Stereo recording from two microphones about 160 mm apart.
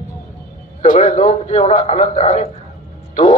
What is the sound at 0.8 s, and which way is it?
A man's voice, 50° left (ahead or behind).